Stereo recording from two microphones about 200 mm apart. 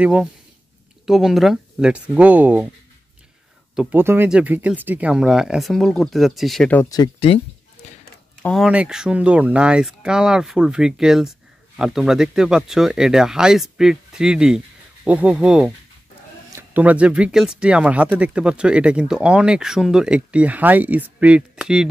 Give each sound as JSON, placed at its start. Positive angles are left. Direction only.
{"t": 0.0, "sound": "speech", "side_deg": -5}
{"t": 3.7, "sound": "speech", "side_deg": -5}
{"t": 7.2, "sound": "speech", "side_deg": 30}
{"t": 8.4, "sound": "speech", "side_deg": 0}